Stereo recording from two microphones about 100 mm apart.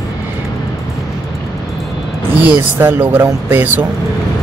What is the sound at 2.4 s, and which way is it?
Speech, 20° right (ahead or behind).